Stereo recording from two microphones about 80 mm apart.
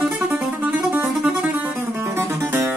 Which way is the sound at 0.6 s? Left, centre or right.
Right.